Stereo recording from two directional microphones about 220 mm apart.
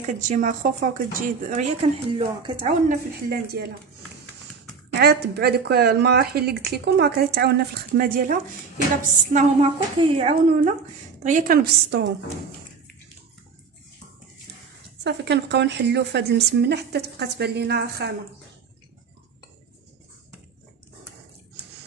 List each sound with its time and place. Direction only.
0.0 s speech: 35° right (ahead or behind)
3.3 s speech: 45° right (ahead or behind)
4.9 s speech: 45° right (ahead or behind)
9.3 s a woman's voice: 30° right (ahead or behind); by 12.1 s 45° right (ahead or behind)
15.0 s speech: 50° right (ahead or behind)